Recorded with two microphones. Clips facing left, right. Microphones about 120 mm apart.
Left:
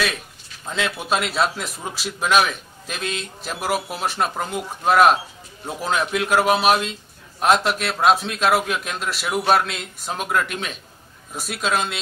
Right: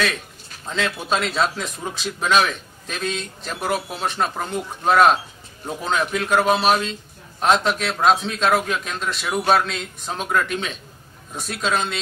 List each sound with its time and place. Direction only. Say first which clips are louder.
0.7 s a man's voice: even; 5° left (ahead or behind)